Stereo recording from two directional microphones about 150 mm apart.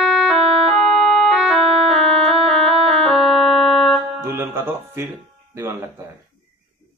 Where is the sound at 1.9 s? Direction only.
45° right (ahead or behind).